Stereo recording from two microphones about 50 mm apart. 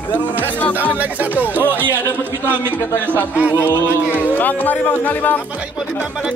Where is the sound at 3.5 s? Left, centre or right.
Left.